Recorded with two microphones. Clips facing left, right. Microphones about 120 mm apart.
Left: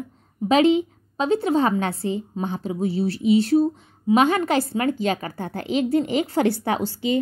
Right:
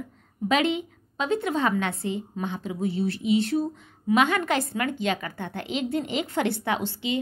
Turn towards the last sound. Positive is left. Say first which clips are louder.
# left 4 dB
turn(degrees=40)  # may be behind; listen again after turning